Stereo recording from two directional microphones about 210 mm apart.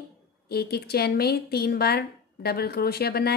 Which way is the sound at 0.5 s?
50° left (ahead or behind).